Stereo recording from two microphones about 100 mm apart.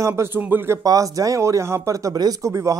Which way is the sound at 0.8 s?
35° right (ahead or behind).